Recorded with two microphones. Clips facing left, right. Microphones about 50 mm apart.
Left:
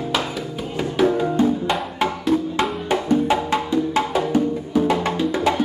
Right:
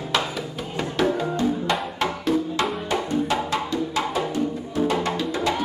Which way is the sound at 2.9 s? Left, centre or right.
Left.